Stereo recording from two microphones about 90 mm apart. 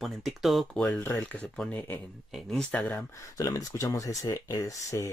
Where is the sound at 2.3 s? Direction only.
Centre (ahead or behind).